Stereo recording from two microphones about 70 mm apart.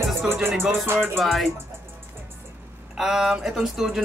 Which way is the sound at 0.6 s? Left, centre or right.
Right.